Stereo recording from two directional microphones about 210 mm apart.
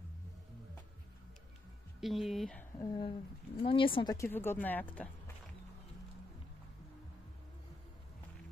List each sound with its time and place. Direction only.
2.0 s speech: centre (ahead or behind)
2.8 s speech: 20° left (ahead or behind)